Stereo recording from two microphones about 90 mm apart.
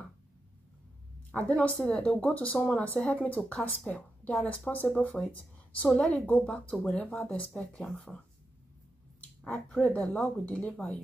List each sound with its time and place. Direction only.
1.3 s speech: 15° left (ahead or behind)
7.0 s speech: 25° left (ahead or behind)
7.5 s speech: 5° left (ahead or behind)
9.4 s speech: 5° left (ahead or behind)